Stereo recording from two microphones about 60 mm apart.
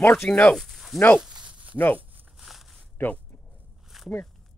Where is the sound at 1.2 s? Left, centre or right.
Centre.